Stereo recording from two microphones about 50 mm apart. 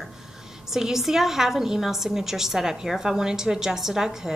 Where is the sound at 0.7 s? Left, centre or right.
Centre.